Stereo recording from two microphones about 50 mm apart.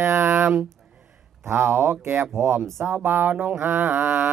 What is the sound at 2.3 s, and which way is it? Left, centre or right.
Speech, right.